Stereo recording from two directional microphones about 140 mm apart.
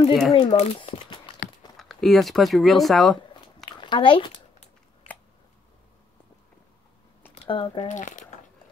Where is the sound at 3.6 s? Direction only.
35° left (ahead or behind).